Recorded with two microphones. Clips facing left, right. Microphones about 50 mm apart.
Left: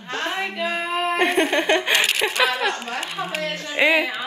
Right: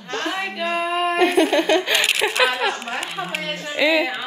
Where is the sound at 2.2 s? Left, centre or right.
Centre.